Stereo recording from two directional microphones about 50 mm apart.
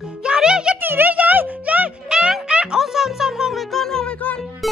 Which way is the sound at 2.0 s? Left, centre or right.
Centre.